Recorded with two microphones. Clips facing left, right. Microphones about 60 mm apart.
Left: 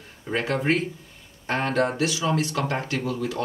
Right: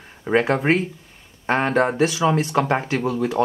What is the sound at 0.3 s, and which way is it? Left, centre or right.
Speech, right.